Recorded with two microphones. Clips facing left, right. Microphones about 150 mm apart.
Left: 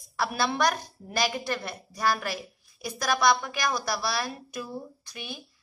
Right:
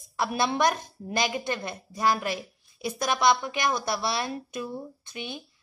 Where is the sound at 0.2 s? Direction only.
20° right (ahead or behind).